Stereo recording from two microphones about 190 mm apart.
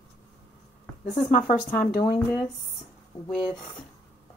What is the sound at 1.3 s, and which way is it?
Speech, 40° left (ahead or behind).